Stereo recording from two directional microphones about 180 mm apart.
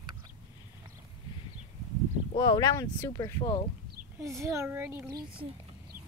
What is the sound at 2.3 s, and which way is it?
Speech, 25° left (ahead or behind).